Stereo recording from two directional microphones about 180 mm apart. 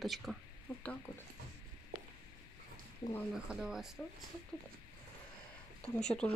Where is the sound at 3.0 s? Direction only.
30° left (ahead or behind).